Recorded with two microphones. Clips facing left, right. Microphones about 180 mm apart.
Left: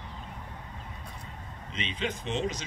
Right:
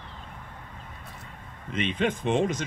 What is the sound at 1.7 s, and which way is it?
Speech, 55° right (ahead or behind).